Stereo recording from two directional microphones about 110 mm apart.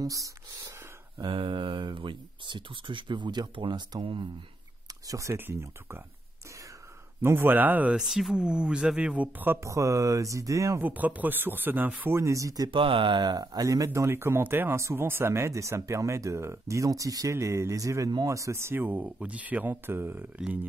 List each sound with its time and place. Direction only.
0.0 s speech: 30° right (ahead or behind)
1.2 s speech: 45° right (ahead or behind)
5.0 s speech: 30° right (ahead or behind)
7.2 s speech: 20° right (ahead or behind)
8.0 s speech: 5° right (ahead or behind); by 10.8 s 30° right (ahead or behind)
10.8 s speech: 15° right (ahead or behind); by 12.7 s 35° right (ahead or behind)
12.7 s speech: 50° right (ahead or behind); by 20.2 s 20° right (ahead or behind)